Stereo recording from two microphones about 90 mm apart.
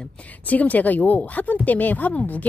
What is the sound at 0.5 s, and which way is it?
Speech, 15° left (ahead or behind).